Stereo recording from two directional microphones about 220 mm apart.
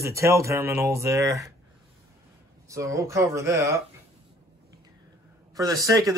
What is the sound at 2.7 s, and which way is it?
Speech, 15° right (ahead or behind).